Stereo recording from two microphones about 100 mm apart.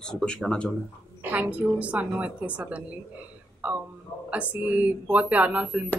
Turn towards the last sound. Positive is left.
turn(degrees=-10)  # may be behind; listen again after turning